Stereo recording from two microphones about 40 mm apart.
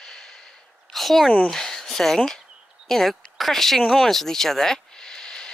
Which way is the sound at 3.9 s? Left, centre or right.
Centre.